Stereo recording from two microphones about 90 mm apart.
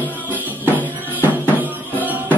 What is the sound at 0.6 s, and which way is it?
Music, 20° right (ahead or behind).